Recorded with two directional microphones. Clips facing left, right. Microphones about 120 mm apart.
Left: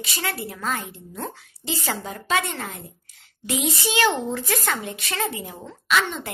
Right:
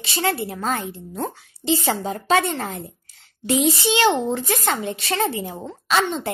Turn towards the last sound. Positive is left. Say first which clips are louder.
# right 3 dB
turn(degrees=-30)  # may be behind; listen again after turning